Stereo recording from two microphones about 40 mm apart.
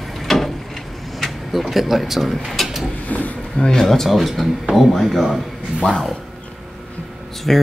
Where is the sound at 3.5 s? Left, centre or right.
Centre.